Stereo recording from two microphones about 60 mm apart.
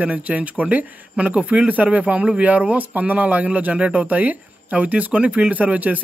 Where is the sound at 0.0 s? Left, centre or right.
Right.